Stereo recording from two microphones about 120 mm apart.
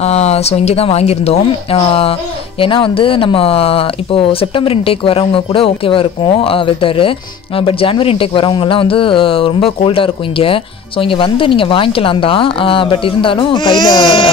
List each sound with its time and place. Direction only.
0.0 s speech: 60° left (ahead or behind); by 14.3 s 40° left (ahead or behind)